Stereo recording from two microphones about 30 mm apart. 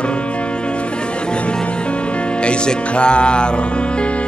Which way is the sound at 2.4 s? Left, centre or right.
Left.